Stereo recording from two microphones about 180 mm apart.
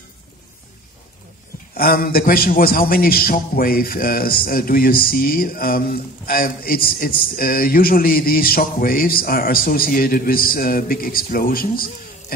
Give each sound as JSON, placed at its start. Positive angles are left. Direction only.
{"t": 1.8, "sound": "a man's voice", "side_deg": 55}